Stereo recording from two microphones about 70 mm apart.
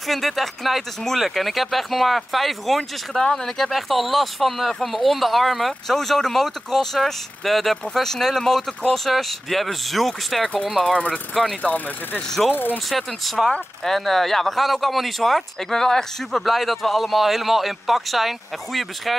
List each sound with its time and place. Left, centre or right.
0.1 s speech: centre
11.6 s speech: left
12.7 s speech: centre